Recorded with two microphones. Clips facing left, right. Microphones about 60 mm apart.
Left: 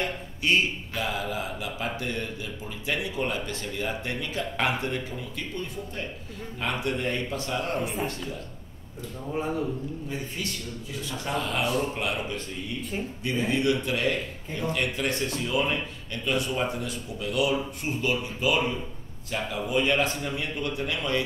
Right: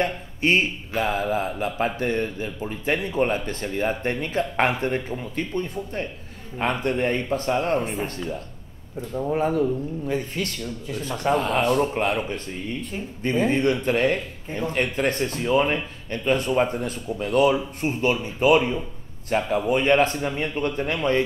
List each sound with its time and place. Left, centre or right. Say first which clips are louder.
0.0 s speech: right 6 dB; right
7.8 s speech: right 2 dB; centre
9.3 s a man's voice: right 6 dB; right
11.0 s speech: right 8 dB; right